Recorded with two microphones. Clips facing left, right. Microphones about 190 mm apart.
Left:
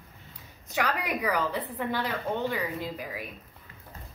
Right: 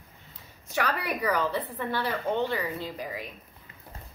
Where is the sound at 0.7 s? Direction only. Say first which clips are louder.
Even; 15° left (ahead or behind).